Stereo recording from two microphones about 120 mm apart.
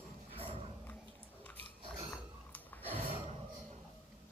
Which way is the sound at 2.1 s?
15° left (ahead or behind).